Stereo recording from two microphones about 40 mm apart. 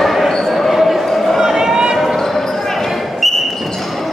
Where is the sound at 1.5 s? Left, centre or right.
Centre.